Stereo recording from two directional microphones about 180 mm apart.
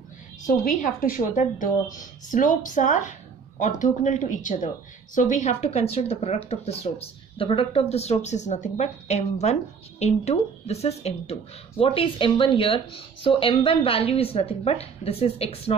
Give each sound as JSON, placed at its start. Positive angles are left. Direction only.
{"t": 0.5, "sound": "a woman's voice", "side_deg": 45}